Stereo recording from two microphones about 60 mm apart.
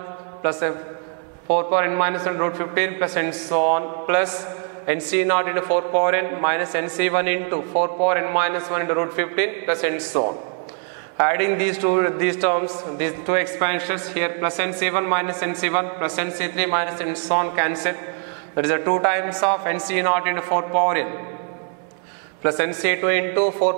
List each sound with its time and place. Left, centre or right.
0.4 s mantra: centre
1.5 s a man's voice: centre
22.4 s a man's voice: centre